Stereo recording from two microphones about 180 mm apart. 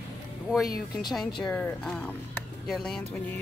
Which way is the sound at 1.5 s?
5° left (ahead or behind).